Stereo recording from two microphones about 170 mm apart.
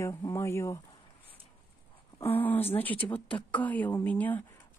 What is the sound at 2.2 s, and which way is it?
Speech, 10° left (ahead or behind).